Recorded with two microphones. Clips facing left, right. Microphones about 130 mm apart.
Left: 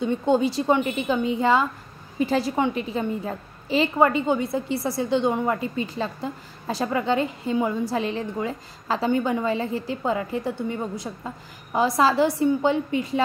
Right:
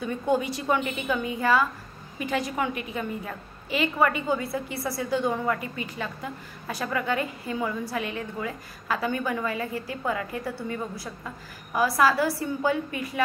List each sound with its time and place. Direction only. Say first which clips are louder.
0.0 s a woman's voice: left 5 dB; 25° left (ahead or behind)